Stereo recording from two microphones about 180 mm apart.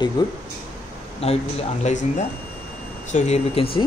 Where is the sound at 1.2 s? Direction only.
35° left (ahead or behind).